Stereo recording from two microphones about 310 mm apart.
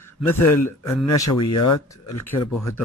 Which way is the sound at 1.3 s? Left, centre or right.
Left.